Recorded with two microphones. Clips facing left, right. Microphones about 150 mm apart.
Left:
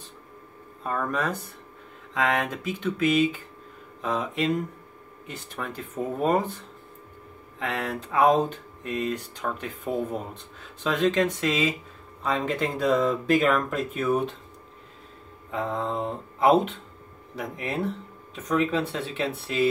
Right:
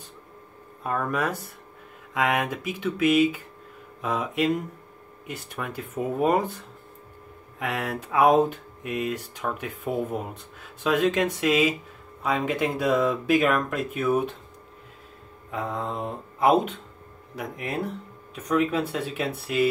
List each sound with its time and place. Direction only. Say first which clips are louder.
0.8 s speech: right 1 dB; 5° right (ahead or behind)
7.5 s speech: right 1 dB; 10° right (ahead or behind)
15.5 s speech: left 2 dB; centre (ahead or behind)